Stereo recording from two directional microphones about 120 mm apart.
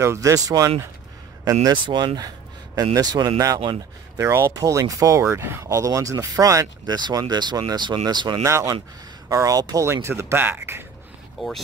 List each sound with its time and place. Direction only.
0.0 s speech: 25° right (ahead or behind)
8.5 s speech: 25° right (ahead or behind)
11.4 s speech: centre (ahead or behind)